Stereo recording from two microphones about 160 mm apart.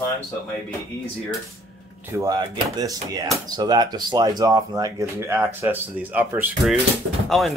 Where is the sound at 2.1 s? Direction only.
20° right (ahead or behind).